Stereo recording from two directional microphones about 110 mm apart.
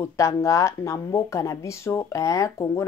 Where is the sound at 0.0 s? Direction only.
25° left (ahead or behind).